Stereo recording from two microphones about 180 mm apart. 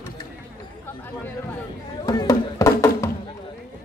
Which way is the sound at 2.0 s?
20° left (ahead or behind).